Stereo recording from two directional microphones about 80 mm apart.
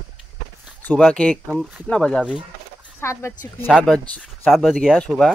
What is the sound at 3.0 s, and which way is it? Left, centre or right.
Speech, left.